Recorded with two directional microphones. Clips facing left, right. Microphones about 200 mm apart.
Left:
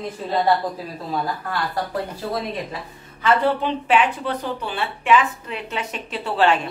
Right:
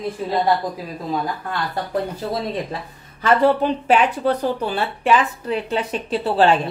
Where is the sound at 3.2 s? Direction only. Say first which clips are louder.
Right 3 dB; 40° right (ahead or behind).